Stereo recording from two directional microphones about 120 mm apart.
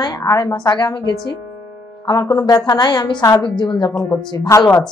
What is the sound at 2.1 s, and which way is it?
Speech, 35° left (ahead or behind).